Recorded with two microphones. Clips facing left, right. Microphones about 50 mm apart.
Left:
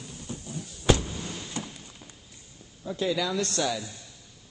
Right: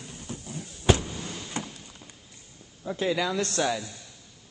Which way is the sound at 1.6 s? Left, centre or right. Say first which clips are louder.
Right 2 dB; right.